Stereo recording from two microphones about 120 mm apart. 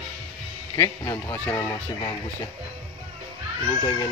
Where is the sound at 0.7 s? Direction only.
25° left (ahead or behind).